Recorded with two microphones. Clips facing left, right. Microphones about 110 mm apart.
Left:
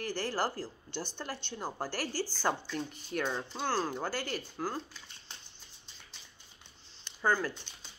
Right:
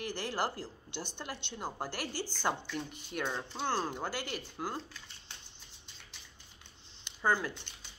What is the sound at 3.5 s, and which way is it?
Speech, 20° right (ahead or behind).